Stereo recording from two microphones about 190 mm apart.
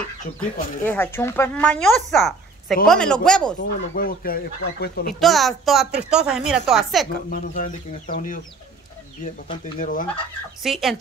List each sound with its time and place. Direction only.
0.4 s a woman's voice: 10° left (ahead or behind)
3.5 s speech: 45° left (ahead or behind)
5.2 s a woman's voice: centre (ahead or behind)
7.2 s speech: 45° left (ahead or behind)
9.8 s speech: 45° left (ahead or behind)
10.6 s a woman's voice: centre (ahead or behind)